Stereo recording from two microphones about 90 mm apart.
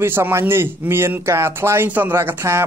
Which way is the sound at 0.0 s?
25° right (ahead or behind).